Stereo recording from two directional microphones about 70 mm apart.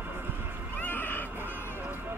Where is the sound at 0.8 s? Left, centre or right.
Left.